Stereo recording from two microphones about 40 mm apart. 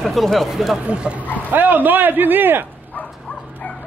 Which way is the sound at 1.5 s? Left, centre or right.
Right.